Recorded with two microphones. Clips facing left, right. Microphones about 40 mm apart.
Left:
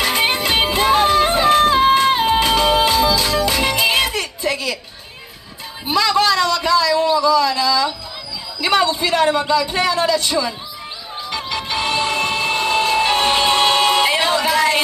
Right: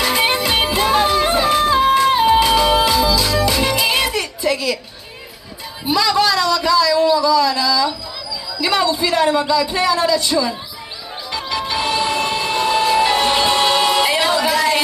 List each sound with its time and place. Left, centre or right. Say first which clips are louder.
0.0 s music: right 1 dB; left
2.2 s music: right 2 dB; left
5.9 s a sound: even; left
8.5 s a man's voice: left 1 dB; left
11.3 s music: right 2 dB; left